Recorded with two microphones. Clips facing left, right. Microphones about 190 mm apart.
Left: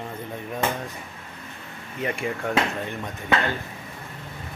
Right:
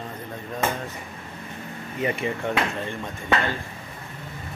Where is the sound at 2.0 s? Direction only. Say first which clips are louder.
Right 1 dB; centre (ahead or behind).